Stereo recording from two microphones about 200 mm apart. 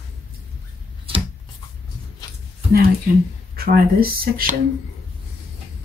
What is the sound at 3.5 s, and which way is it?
Speech, 50° right (ahead or behind).